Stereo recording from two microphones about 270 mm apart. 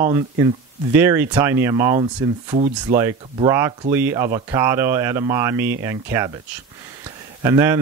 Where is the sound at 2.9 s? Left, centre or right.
Right.